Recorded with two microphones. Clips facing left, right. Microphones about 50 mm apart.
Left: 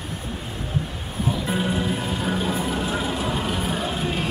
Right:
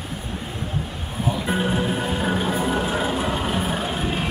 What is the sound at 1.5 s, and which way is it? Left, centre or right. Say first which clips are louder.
Music: right 3 dB; centre.